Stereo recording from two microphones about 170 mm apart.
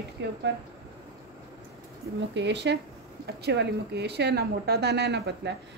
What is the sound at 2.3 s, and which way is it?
Speech, 90° right.